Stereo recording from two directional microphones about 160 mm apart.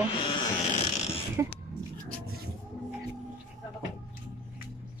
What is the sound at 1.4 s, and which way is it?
Throat clearing, 15° right (ahead or behind).